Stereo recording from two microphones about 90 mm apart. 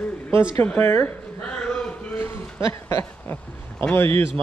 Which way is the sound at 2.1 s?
25° left (ahead or behind).